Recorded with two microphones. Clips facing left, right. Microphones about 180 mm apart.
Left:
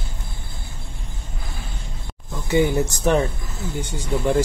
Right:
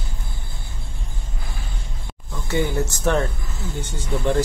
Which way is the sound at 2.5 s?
15° left (ahead or behind).